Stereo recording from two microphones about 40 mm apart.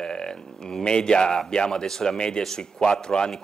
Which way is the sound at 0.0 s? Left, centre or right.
Centre.